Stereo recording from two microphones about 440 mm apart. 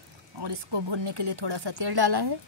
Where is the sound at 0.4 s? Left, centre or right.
Right.